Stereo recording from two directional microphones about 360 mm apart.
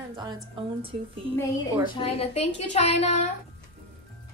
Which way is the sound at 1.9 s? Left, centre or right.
Centre.